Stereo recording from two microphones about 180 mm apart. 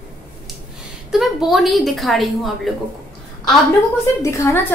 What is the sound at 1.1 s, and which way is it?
A woman's voice, centre (ahead or behind).